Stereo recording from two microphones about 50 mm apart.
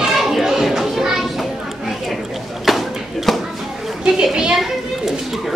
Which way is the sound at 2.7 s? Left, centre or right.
Centre.